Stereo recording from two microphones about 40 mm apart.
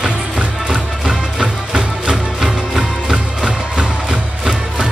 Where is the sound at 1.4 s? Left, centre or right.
Right.